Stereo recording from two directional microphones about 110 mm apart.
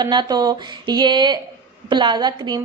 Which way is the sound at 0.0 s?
40° right (ahead or behind).